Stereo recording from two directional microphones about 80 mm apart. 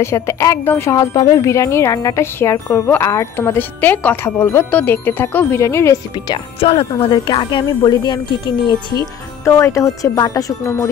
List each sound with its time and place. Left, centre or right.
0.0 s speech: left
0.9 s speech: left
4.6 s speech: left
5.6 s speech: left
6.1 s speech: left
7.2 s speech: left